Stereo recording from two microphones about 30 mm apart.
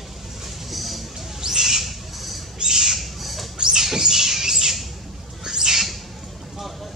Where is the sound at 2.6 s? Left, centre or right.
Centre.